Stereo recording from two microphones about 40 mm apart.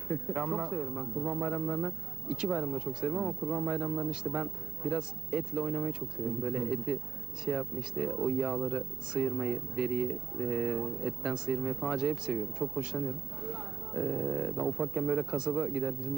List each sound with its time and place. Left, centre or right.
0.1 s a man's voice: centre
2.2 s speech: centre
2.5 s a man's voice: centre
2.8 s a man's voice: centre
3.1 s a man's voice: centre
11.6 s a man's voice: centre
15.3 s a man's voice: centre